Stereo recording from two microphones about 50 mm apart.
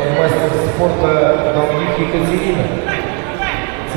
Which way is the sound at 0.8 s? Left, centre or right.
Right.